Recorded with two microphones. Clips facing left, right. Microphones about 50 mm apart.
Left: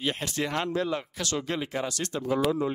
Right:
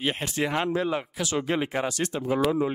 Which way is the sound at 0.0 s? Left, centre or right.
Centre.